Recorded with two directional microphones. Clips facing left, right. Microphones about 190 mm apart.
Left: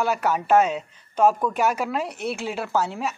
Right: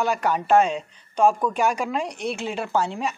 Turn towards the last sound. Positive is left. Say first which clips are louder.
# right 1 dB
turn(degrees=5)  # may be behind; listen again after turning